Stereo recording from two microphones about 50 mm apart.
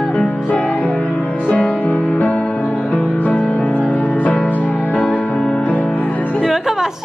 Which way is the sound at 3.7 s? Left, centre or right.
Left.